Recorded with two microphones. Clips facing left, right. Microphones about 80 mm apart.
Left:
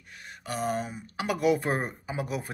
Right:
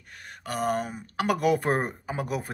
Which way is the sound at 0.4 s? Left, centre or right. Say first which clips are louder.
Right 3 dB; right.